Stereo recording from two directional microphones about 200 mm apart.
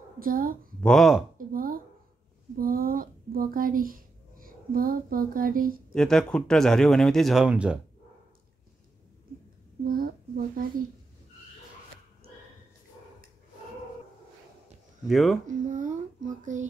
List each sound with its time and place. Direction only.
0.2 s a woman's voice: 45° right (ahead or behind)
0.7 s speech: 5° left (ahead or behind)
1.5 s speech: 45° right (ahead or behind)
5.9 s speech: 5° left (ahead or behind)
9.8 s a sound: 45° right (ahead or behind)
15.0 s speech: centre (ahead or behind)
15.4 s speech: 40° right (ahead or behind)